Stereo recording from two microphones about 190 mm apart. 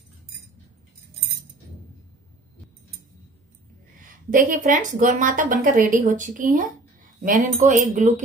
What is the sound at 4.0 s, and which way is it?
Speech, 45° right (ahead or behind).